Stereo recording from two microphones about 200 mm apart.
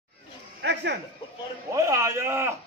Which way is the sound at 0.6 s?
60° right (ahead or behind).